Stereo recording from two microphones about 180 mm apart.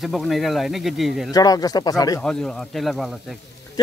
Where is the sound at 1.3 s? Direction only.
20° left (ahead or behind).